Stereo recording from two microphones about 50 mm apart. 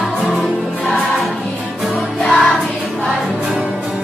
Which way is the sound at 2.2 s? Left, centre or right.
Centre.